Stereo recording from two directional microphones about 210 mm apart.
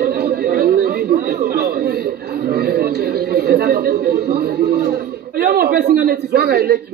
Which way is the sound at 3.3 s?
50° right (ahead or behind).